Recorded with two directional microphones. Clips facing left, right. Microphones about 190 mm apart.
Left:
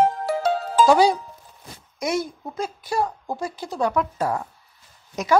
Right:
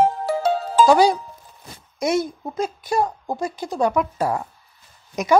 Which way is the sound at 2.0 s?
25° right (ahead or behind).